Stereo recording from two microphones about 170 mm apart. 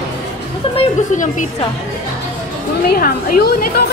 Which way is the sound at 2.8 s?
65° left (ahead or behind).